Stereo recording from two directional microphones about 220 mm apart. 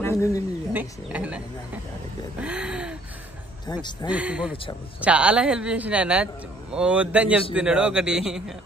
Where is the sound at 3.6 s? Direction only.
20° left (ahead or behind).